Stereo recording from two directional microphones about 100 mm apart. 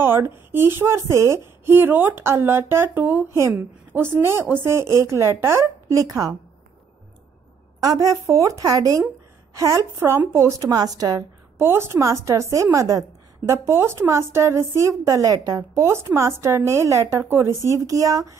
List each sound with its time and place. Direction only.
0.0 s a woman's voice: 20° right (ahead or behind)
7.8 s a woman's voice: 35° right (ahead or behind)